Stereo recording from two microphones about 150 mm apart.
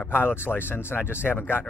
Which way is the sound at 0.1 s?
15° left (ahead or behind).